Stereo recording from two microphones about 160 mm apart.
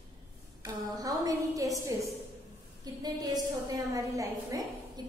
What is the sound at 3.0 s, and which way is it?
A woman's voice, 25° right (ahead or behind).